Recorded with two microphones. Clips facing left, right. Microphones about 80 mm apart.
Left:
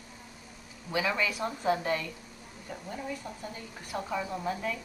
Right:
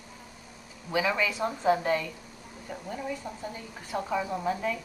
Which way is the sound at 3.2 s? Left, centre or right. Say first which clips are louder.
Right 3 dB; right.